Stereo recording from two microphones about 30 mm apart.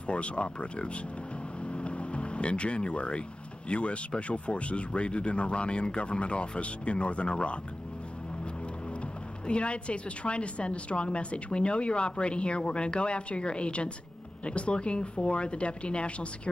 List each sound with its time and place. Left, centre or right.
0.0 s a woman's voice: left
1.6 s vehicle: left
4.3 s a woman's voice: left
9.5 s a woman's voice: left